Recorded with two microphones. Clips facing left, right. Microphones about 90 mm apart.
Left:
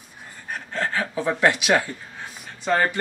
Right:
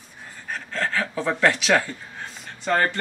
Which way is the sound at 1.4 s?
15° left (ahead or behind).